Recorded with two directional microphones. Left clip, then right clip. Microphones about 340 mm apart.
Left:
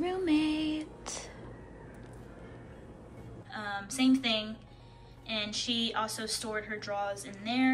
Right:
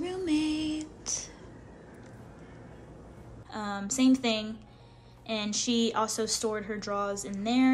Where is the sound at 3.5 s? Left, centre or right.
Centre.